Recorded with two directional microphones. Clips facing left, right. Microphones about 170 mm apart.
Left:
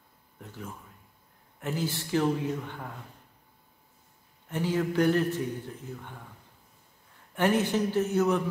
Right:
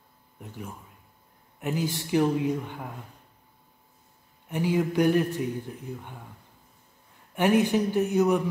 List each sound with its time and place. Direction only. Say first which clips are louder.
0.4 s a man's voice: right 2 dB; 15° right (ahead or behind)
4.5 s a man's voice: right 3 dB; 15° right (ahead or behind)
7.3 s a man's voice: right 3 dB; 15° right (ahead or behind)